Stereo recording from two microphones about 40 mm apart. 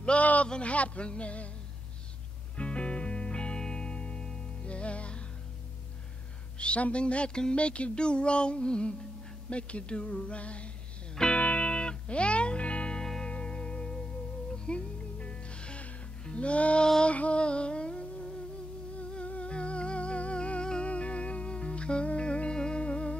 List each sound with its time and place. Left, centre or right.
0.0 s a sound: left
0.5 s speech: left
2.5 s music: left
6.6 s speech: left
11.3 s music: left